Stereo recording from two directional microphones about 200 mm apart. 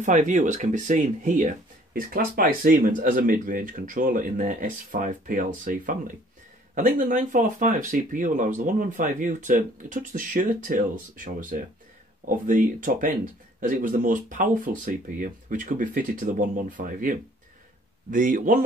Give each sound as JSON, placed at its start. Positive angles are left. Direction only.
{"t": 0.0, "sound": "speech", "side_deg": -40}